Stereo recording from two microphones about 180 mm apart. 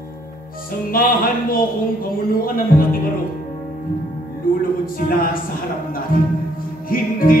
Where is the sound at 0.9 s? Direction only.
55° left (ahead or behind).